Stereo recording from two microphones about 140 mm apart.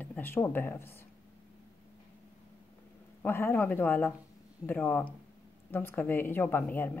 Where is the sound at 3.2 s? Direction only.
15° left (ahead or behind).